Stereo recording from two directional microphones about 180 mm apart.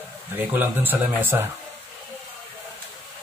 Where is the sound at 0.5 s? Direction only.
10° right (ahead or behind).